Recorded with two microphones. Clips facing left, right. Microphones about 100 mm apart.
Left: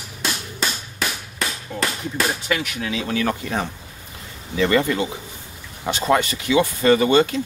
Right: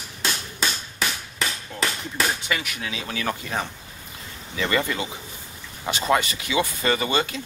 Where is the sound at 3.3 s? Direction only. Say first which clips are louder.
Left 3 dB; 15° left (ahead or behind).